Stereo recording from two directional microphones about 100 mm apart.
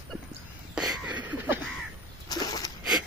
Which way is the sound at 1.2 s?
20° right (ahead or behind).